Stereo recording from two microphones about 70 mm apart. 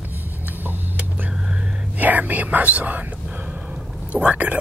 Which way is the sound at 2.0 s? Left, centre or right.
Right.